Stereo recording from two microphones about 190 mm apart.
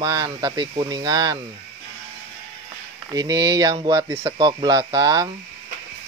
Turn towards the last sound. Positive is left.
turn(degrees=-20)  # may be behind; listen again after turning